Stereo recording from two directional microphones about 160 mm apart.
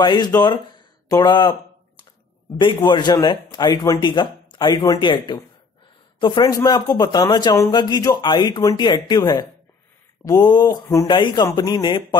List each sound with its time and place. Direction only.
0.0 s a man's voice: 25° left (ahead or behind)
2.6 s a man's voice: 30° left (ahead or behind)